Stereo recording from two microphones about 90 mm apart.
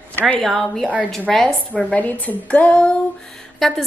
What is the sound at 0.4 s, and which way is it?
A woman's voice, centre (ahead or behind).